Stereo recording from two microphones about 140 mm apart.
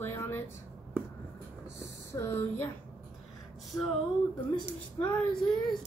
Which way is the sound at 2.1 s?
20° left (ahead or behind).